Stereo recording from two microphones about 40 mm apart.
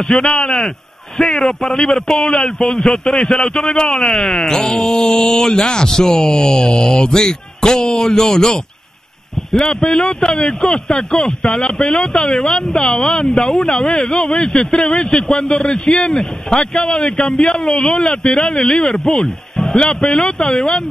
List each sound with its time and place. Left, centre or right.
0.0 s speech: centre
19.2 s music: centre
19.8 s speech: left